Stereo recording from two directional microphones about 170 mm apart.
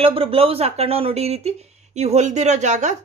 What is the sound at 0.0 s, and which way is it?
A woman's voice, 35° right (ahead or behind).